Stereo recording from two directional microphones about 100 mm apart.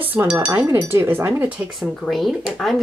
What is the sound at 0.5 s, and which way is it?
Speech, 35° right (ahead or behind).